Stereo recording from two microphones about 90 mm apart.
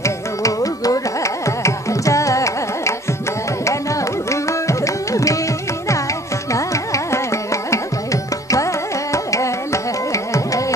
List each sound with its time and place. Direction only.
0.0 s carnatic music: 35° left (ahead or behind)
3.6 s tabla: 35° left (ahead or behind)
6.5 s carnatic music: 35° left (ahead or behind)